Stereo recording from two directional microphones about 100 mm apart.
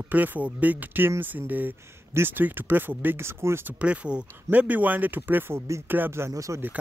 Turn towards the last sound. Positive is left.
turn(degrees=-30)  # may be behind; listen again after turning